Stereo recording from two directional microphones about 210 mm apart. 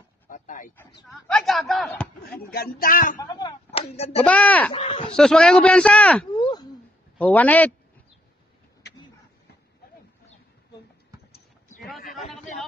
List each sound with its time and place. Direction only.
0.3 s a sound: 40° left (ahead or behind)
1.0 s a man's voice: centre (ahead or behind)
2.5 s speech: 45° left (ahead or behind)
3.2 s speech: 20° left (ahead or behind)
4.2 s speech: 5° left (ahead or behind)
4.7 s speech: 25° left (ahead or behind)
5.1 s a man's voice: 5° left (ahead or behind)
6.3 s a sound: 20° left (ahead or behind)
7.2 s speech: 5° left (ahead or behind)
12.0 s a sound: 40° left (ahead or behind)